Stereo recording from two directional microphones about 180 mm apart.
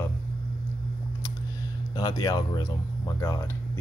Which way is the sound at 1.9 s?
25° left (ahead or behind).